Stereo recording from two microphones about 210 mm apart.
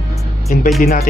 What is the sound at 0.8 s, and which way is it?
Speech, 45° left (ahead or behind).